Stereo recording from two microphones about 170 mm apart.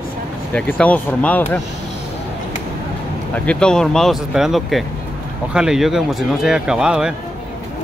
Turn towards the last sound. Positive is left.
turn(degrees=-5)  # may be behind; listen again after turning